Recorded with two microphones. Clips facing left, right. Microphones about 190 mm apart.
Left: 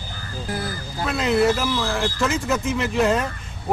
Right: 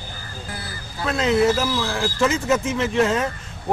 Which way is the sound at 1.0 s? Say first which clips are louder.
Right 1 dB; centre (ahead or behind).